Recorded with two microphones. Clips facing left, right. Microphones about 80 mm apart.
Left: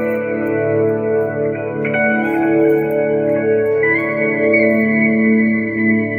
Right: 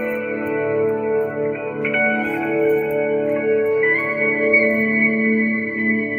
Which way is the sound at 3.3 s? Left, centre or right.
Left.